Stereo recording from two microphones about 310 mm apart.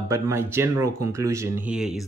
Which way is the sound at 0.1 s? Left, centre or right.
Centre.